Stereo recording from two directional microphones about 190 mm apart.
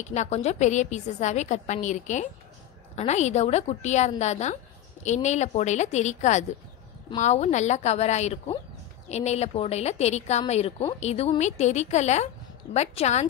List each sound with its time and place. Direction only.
0.0 s a woman's voice: 35° left (ahead or behind)